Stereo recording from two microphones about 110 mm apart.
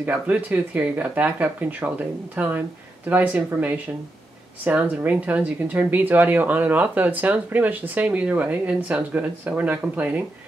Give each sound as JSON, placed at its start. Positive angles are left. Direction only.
{"t": 0.0, "sound": "speech", "side_deg": -15}